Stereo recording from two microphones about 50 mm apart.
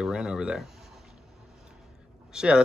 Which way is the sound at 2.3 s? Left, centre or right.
Centre.